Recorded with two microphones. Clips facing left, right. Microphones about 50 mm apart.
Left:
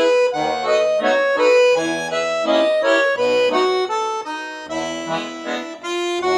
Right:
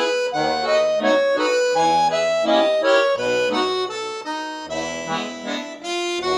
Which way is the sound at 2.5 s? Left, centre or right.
Centre.